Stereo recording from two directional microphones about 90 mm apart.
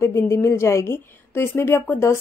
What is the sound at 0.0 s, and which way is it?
A woman's voice, 30° left (ahead or behind).